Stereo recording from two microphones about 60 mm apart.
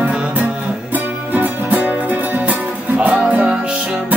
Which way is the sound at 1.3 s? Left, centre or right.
Right.